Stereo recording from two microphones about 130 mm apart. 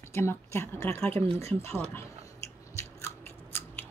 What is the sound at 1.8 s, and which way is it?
Biting, 20° left (ahead or behind).